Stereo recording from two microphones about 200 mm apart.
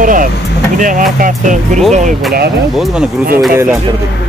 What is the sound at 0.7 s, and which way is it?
Speech, 40° right (ahead or behind).